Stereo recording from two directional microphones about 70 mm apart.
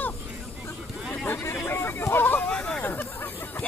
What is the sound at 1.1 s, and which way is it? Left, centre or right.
Vehicle, left.